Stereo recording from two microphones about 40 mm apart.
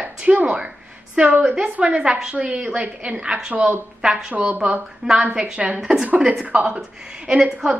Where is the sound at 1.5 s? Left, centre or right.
Right.